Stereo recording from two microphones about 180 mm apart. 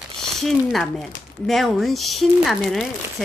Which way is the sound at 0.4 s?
Centre (ahead or behind).